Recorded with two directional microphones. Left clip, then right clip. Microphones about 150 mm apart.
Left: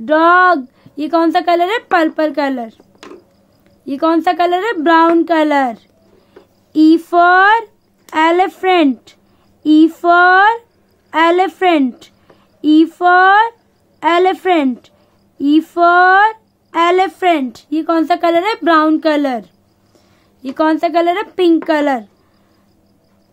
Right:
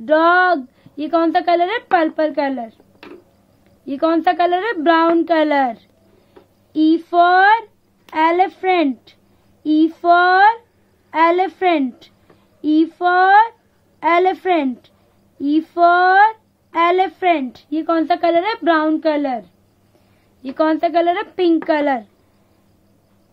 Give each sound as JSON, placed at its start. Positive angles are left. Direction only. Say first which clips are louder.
{"t": 0.0, "sound": "a woman's voice", "louder": "left 4 dB", "side_deg": 15}
{"t": 3.8, "sound": "a woman's voice", "louder": "left 3 dB", "side_deg": 10}
{"t": 6.7, "sound": "female singing", "louder": "left 5 dB", "side_deg": 30}
{"t": 8.1, "sound": "speech", "louder": "left 3 dB", "side_deg": 30}
{"t": 20.4, "sound": "a woman's voice", "louder": "left 3 dB", "side_deg": 15}